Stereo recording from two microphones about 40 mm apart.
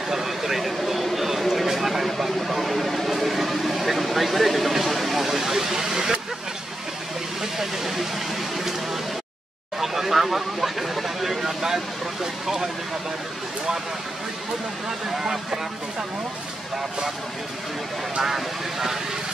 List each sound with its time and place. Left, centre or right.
0.1 s a sound: centre
7.5 s speech: centre
15.0 s speech: centre
18.2 s speech: centre